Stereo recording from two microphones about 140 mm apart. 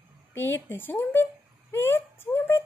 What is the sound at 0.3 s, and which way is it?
Speech, 15° left (ahead or behind).